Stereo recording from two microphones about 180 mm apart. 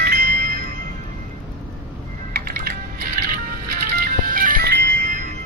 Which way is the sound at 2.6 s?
55° right (ahead or behind).